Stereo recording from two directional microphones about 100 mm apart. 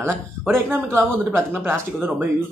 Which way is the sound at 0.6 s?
25° right (ahead or behind).